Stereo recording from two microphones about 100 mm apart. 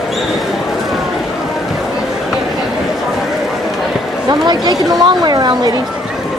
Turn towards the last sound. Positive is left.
turn(degrees=-45)  # may be behind; listen again after turning